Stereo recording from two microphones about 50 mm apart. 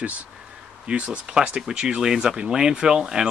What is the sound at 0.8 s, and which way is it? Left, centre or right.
Speech, right.